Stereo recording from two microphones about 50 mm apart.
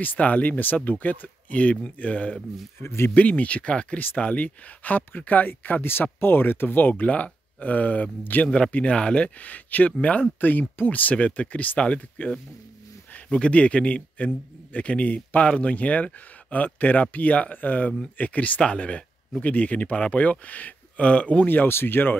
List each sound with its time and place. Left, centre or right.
0.0 s a man's voice: left
2.8 s speech: left
3.2 s a man's voice: left
8.6 s a man's voice: left
21.5 s speech: left